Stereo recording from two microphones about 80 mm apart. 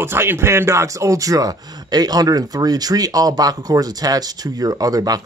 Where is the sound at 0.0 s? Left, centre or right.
Right.